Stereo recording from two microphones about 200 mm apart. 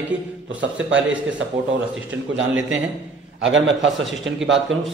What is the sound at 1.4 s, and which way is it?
A man's voice, 70° right (ahead or behind).